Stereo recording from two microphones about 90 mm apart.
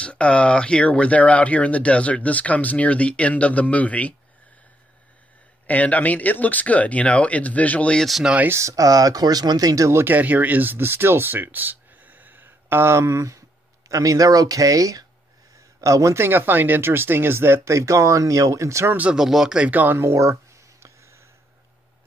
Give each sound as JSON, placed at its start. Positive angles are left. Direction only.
{"t": 0.0, "sound": "speech", "side_deg": 10}
{"t": 5.7, "sound": "speech", "side_deg": 15}
{"t": 8.1, "sound": "speech", "side_deg": -10}
{"t": 8.5, "sound": "speech", "side_deg": -35}
{"t": 18.9, "sound": "speech", "side_deg": -10}
{"t": 19.7, "sound": "speech", "side_deg": -20}